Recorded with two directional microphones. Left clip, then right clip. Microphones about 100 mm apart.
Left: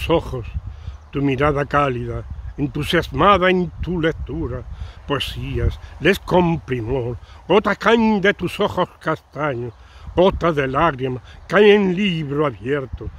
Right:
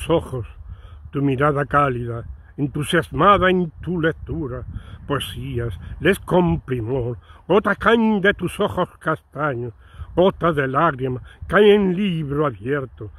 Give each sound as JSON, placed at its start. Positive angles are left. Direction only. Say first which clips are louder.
{"t": 0.0, "sound": "speech", "louder": "left 1 dB", "side_deg": -50}
{"t": 2.7, "sound": "speech", "louder": "left 1 dB", "side_deg": -45}